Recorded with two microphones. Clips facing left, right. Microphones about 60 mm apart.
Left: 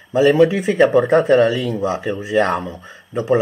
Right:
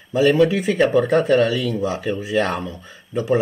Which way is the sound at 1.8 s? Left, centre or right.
Left.